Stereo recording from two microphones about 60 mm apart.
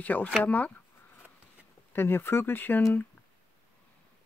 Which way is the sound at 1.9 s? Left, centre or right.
Left.